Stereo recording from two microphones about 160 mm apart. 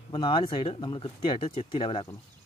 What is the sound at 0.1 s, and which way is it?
Speech, 30° left (ahead or behind).